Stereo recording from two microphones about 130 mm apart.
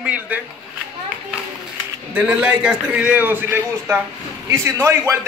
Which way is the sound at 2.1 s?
10° right (ahead or behind).